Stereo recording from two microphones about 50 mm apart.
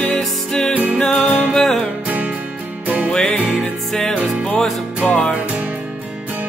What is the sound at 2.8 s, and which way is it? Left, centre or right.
Music, right.